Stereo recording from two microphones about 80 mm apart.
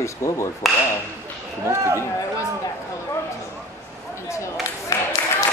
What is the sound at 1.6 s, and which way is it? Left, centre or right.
Speech, right.